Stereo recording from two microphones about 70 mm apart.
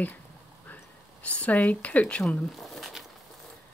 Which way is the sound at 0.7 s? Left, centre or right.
Left.